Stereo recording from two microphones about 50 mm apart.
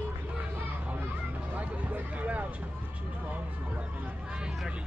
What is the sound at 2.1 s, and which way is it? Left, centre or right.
Speech, right.